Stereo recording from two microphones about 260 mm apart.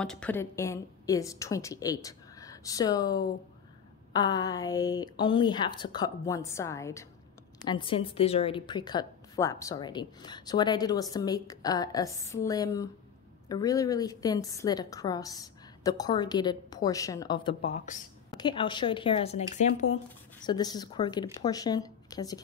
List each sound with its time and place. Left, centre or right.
0.0 s a woman's voice: centre; by 20.0 s left
20.4 s a woman's voice: centre